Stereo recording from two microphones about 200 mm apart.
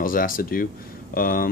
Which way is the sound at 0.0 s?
45° left (ahead or behind).